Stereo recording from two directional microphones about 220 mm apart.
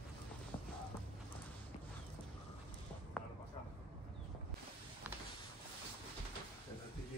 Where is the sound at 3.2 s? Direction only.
Centre (ahead or behind).